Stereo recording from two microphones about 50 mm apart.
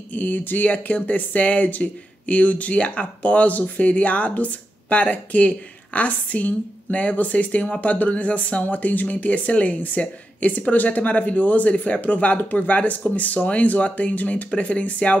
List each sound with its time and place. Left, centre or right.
0.1 s a woman's voice: left